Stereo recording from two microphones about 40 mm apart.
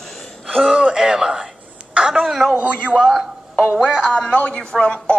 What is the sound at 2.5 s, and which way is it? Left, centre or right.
Speech, right.